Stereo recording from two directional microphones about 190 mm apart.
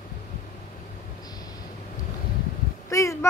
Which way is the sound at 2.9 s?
15° left (ahead or behind).